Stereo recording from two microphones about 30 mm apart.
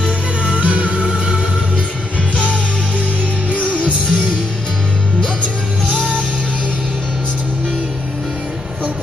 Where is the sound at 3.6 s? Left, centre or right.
Left.